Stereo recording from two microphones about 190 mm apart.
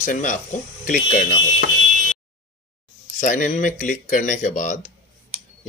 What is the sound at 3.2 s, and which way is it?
Speech, 40° left (ahead or behind).